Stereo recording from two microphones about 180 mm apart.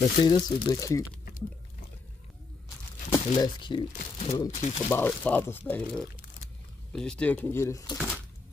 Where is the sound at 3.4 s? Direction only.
25° left (ahead or behind).